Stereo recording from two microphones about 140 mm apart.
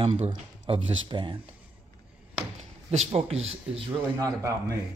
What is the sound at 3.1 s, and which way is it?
Speech, 45° right (ahead or behind).